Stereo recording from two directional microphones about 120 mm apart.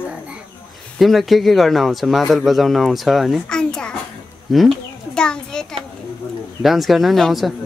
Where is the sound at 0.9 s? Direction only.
Centre (ahead or behind).